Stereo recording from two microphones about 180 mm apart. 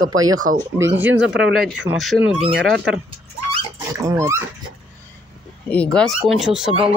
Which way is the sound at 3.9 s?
15° right (ahead or behind).